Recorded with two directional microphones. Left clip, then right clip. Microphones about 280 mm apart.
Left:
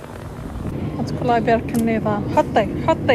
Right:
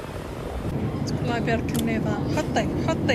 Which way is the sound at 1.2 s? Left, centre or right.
Centre.